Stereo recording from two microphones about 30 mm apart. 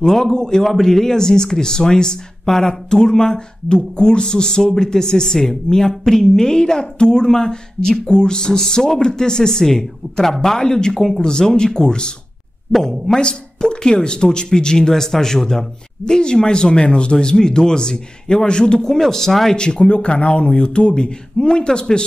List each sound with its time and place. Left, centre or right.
0.0 s speech: centre
12.7 s speech: centre
13.2 s speech: left
17.3 s speech: left
18.9 s speech: centre
19.5 s speech: left